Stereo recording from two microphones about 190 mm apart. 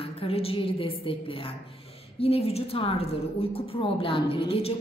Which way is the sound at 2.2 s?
30° left (ahead or behind).